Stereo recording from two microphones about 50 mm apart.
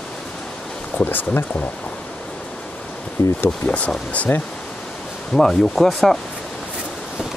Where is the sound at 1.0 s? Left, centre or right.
Left.